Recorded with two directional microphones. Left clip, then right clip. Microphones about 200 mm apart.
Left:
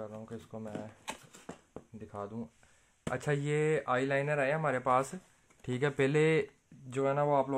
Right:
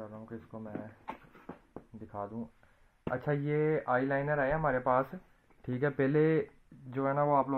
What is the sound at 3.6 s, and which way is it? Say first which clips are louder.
Speech: right 1 dB; 30° left (ahead or behind).